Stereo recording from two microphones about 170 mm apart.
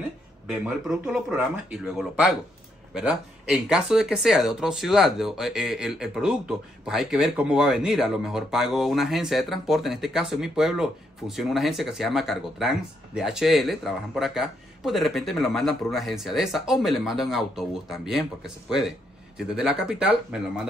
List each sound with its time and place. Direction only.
0.5 s speech: 5° right (ahead or behind)